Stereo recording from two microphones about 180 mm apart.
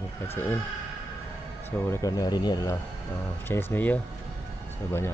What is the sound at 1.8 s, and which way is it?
Speech, 15° left (ahead or behind).